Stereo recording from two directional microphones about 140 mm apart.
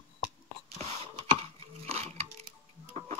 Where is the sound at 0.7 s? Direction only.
50° right (ahead or behind).